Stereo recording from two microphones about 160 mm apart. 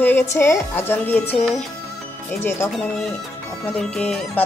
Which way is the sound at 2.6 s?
15° left (ahead or behind).